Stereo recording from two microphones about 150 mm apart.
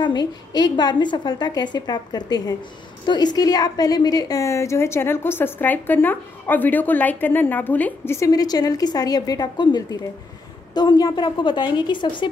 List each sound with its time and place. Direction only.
0.0 s a woman's voice: 30° left (ahead or behind)